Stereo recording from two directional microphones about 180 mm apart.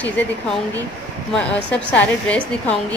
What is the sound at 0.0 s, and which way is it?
A woman's voice, 10° left (ahead or behind).